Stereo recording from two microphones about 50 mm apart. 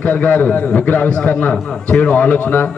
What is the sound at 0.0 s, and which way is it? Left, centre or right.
A man's voice, left.